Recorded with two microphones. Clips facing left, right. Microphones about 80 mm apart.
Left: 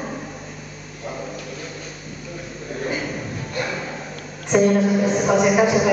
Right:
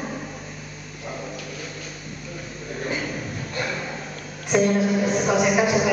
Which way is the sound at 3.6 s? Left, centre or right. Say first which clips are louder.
Left 2 dB; centre.